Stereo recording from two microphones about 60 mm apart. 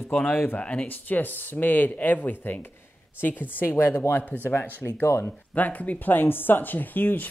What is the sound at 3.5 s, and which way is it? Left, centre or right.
Speech, left.